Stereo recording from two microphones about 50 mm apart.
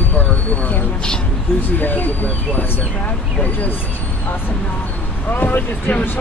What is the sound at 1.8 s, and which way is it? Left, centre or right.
Speech, left.